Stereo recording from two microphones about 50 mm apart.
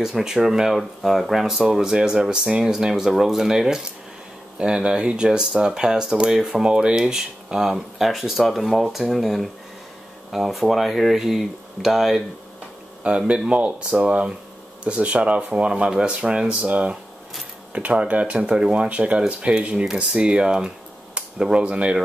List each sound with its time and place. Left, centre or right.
0.0 s speech: centre
13.0 s speech: right